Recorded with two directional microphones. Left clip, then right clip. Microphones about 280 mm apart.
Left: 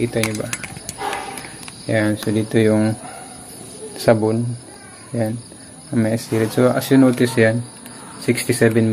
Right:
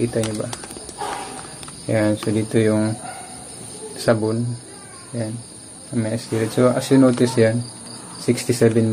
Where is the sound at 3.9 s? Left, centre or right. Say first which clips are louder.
Left 3 dB; centre.